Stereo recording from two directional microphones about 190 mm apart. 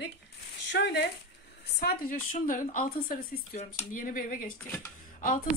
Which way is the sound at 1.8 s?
50° left (ahead or behind).